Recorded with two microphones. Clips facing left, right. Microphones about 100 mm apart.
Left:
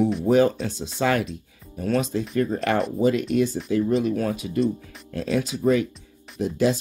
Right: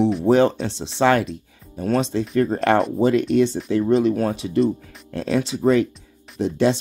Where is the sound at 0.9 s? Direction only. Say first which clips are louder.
Right 5 dB; 65° right (ahead or behind).